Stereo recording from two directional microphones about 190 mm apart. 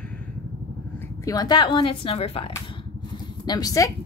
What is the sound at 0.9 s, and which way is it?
Speech, 15° left (ahead or behind).